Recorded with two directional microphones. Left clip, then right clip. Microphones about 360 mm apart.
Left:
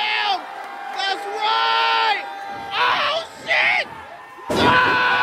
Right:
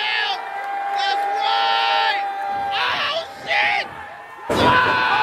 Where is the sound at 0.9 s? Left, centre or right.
Centre.